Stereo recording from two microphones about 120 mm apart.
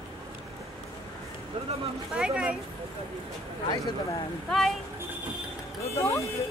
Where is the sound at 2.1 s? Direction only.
10° right (ahead or behind).